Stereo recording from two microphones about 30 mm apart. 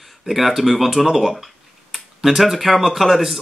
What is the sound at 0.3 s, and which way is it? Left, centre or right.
Speech, centre.